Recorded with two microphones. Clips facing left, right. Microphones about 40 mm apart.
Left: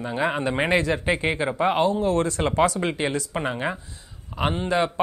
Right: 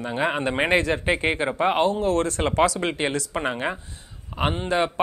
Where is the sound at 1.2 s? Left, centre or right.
Right.